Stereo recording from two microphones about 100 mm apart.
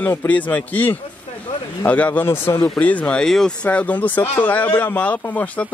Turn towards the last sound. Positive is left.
turn(degrees=15)  # may be behind; listen again after turning